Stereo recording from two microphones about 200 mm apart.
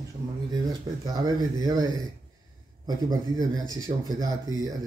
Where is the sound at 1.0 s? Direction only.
20° right (ahead or behind).